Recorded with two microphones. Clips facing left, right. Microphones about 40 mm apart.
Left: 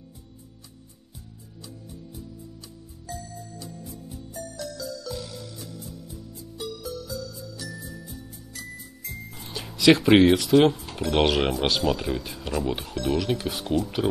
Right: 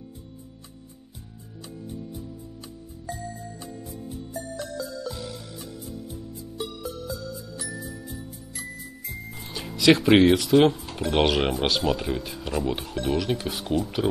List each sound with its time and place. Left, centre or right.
3.1 s music: right
7.6 s jingle: centre
9.3 s speech: centre